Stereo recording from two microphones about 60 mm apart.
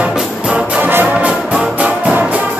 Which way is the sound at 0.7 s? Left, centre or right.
Right.